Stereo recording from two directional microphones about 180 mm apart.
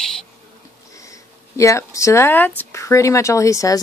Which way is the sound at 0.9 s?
15° left (ahead or behind).